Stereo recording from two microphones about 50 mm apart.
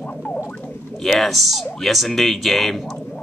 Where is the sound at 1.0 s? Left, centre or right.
Centre.